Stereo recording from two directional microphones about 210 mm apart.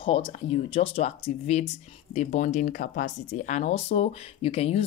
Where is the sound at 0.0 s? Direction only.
25° left (ahead or behind).